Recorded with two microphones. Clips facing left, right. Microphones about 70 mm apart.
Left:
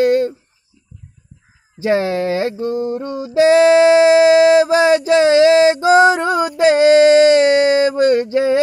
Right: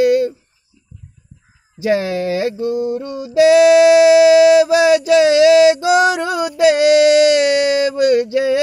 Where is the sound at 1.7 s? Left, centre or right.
Left.